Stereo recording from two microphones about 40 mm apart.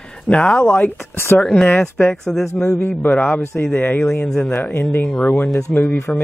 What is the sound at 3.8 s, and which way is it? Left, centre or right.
Speech, left.